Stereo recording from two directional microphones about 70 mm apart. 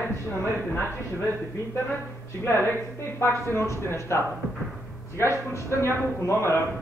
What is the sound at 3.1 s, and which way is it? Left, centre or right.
A man's voice, left.